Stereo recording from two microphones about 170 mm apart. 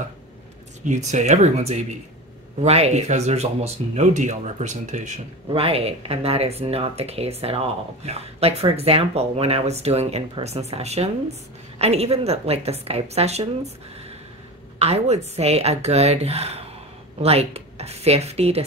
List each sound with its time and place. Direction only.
0.8 s speech: 45° right (ahead or behind)
5.5 s speech: 35° right (ahead or behind)
14.8 s speech: 40° right (ahead or behind)